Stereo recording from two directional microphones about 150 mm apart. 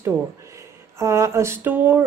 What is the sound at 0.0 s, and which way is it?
Speech, 20° right (ahead or behind).